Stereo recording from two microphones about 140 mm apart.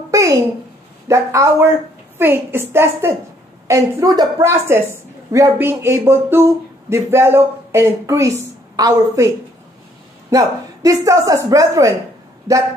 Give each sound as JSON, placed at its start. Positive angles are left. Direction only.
{"t": 0.1, "sound": "a sound", "side_deg": -20}
{"t": 1.0, "sound": "a woman's voice", "side_deg": -20}
{"t": 10.3, "sound": "a woman's voice", "side_deg": -25}